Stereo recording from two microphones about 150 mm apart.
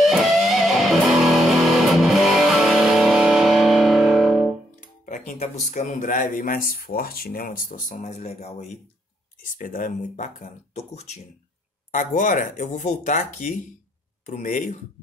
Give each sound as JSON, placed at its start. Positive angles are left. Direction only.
{"t": 0.0, "sound": "music", "side_deg": 0}
{"t": 4.6, "sound": "speech", "side_deg": 60}
{"t": 9.4, "sound": "speech", "side_deg": 60}
{"t": 11.9, "sound": "speech", "side_deg": 60}